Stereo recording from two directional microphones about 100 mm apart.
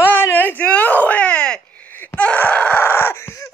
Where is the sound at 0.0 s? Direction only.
20° left (ahead or behind).